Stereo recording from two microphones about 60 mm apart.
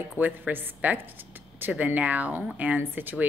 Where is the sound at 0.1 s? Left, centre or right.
Right.